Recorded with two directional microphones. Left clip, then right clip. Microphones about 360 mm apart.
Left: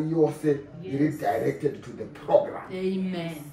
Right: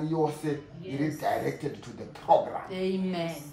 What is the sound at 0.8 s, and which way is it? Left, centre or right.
Speech, centre.